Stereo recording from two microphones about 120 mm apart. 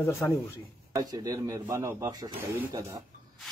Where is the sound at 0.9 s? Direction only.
30° right (ahead or behind).